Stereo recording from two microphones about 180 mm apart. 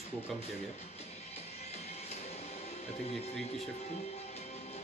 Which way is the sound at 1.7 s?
35° left (ahead or behind).